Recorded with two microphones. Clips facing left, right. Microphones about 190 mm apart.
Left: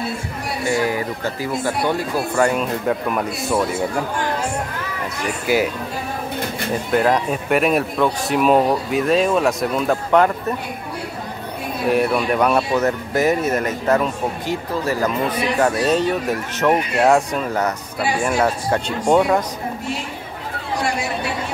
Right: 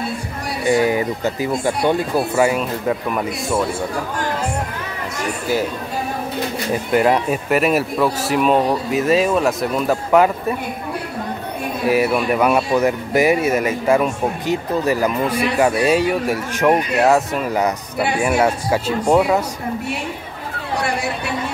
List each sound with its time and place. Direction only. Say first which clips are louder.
0.7 s speech: right 5 dB; 20° right (ahead or behind)
2.3 s speech: left 1 dB; 5° right (ahead or behind)
7.0 s speech: right 2 dB; 5° right (ahead or behind)
11.9 s speech: right 1 dB; 5° right (ahead or behind)